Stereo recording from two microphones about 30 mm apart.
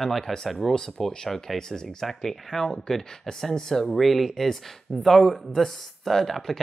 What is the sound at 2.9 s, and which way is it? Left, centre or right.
Speech, centre.